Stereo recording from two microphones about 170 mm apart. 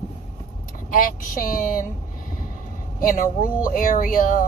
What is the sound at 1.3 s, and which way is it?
Speech, 55° left (ahead or behind).